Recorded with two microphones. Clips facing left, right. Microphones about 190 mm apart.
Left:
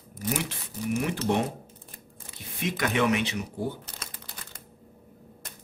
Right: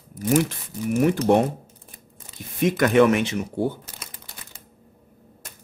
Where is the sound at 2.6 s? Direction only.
50° right (ahead or behind).